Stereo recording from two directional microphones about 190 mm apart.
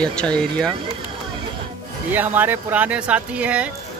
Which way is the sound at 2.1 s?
10° right (ahead or behind).